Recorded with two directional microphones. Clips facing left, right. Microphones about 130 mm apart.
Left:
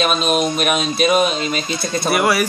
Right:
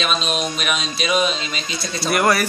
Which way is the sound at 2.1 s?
5° left (ahead or behind).